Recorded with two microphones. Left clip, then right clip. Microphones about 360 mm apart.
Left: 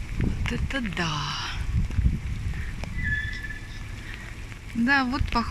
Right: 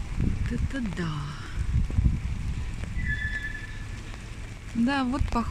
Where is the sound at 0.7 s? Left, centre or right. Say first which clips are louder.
Left 7 dB; centre.